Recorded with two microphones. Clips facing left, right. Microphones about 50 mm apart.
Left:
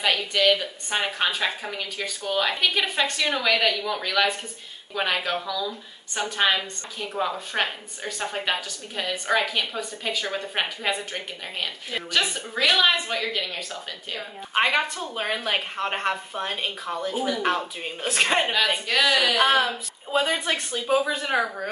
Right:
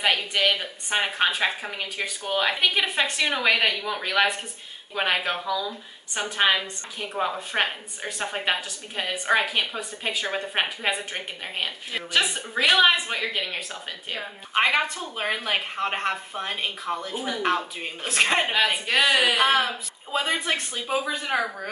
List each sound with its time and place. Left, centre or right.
0.0 s a woman's voice: centre
14.5 s a woman's voice: centre
18.5 s a woman's voice: right
19.4 s a woman's voice: centre